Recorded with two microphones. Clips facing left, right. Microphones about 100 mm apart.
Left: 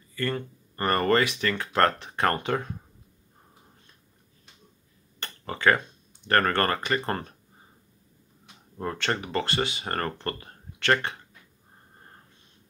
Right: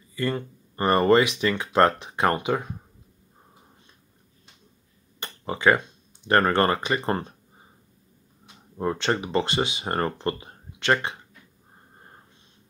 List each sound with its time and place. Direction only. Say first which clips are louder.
0.1 s speech: right 2 dB; 15° right (ahead or behind)
5.2 s speech: right 2 dB; 15° right (ahead or behind)
8.7 s speech: right 4 dB; 20° right (ahead or behind)